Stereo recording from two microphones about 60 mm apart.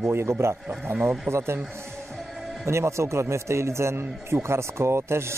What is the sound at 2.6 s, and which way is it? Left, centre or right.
A man's voice, right.